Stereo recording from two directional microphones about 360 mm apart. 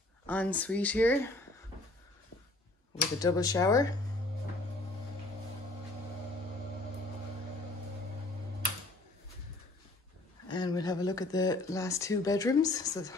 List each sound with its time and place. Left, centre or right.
0.3 s speech: centre
3.2 s speech: centre
10.5 s speech: centre